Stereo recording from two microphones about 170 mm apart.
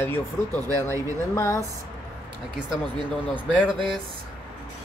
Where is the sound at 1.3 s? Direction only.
15° left (ahead or behind).